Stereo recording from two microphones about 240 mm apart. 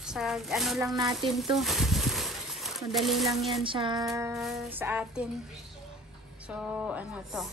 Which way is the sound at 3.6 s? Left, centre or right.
Centre.